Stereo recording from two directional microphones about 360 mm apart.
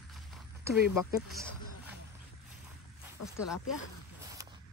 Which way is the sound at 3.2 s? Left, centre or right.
Left.